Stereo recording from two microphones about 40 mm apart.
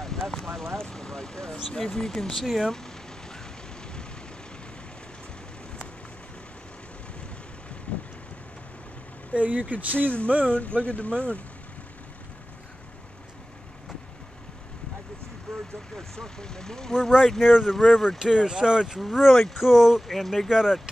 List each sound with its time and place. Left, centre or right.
0.0 s a sound: centre
0.7 s speech: centre
2.7 s vehicle: centre
7.9 s vehicle: left
9.3 s speech: right
10.5 s speech: left
15.5 s vehicle: centre
16.0 s speech: centre
17.4 s speech: centre
17.6 s speech: centre
18.2 s speech: centre
20.1 s speech: centre
20.4 s speech: centre